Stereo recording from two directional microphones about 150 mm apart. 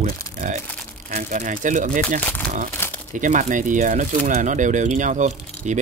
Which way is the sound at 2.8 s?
15° left (ahead or behind).